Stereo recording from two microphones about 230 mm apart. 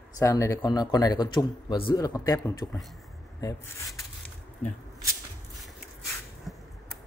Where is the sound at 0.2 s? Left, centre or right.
Centre.